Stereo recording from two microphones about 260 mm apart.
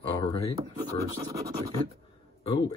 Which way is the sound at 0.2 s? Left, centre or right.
Centre.